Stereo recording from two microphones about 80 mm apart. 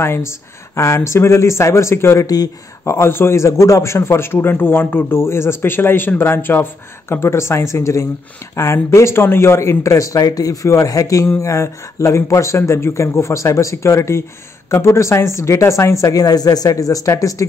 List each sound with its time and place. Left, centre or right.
0.0 s a man's voice: left
2.2 s speech: left
2.8 s a man's voice: left